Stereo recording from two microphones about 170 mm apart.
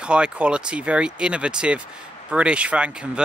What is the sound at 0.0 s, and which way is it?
Speech, 5° right (ahead or behind).